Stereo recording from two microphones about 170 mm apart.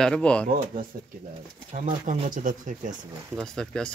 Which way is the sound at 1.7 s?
45° right (ahead or behind).